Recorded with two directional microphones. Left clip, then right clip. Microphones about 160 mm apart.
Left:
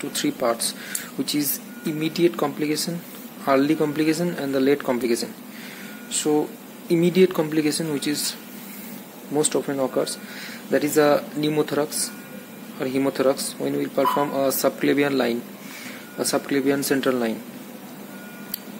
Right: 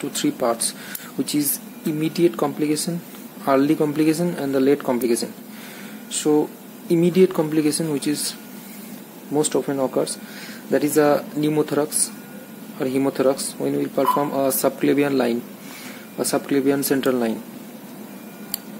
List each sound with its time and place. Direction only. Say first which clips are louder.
0.0 s speech: right 1 dB; 15° right (ahead or behind)